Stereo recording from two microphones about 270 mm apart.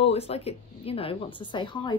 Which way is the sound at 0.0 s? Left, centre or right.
Left.